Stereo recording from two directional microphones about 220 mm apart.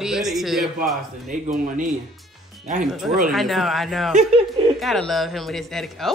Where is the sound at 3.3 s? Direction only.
Centre (ahead or behind).